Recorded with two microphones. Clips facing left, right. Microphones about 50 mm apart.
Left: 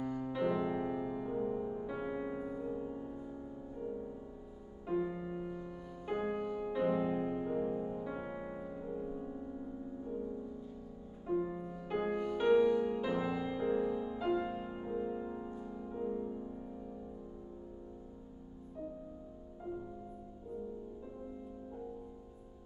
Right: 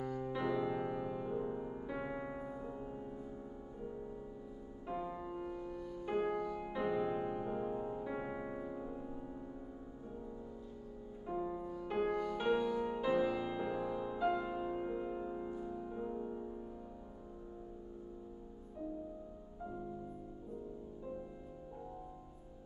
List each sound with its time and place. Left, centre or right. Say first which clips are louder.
0.0 s music: left 3 dB; centre
2.3 s music: left 5 dB; centre
4.8 s music: left 6 dB; centre
5.1 s music: left 2 dB; centre
6.6 s music: left 6 dB; centre
7.7 s music: left 1 dB; centre
11.5 s music: even; centre
12.4 s music: left 9 dB; centre
14.8 s music: left 1 dB; centre